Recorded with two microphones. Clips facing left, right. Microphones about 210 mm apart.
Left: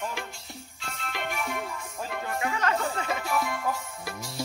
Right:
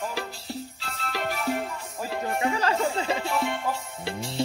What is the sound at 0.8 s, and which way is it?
Music, 35° right (ahead or behind).